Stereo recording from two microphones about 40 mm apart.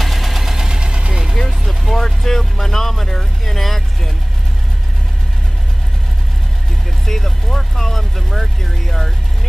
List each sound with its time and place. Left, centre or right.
0.0 s engine: centre; by 1.1 s right
1.5 s speech: centre
7.1 s speech: centre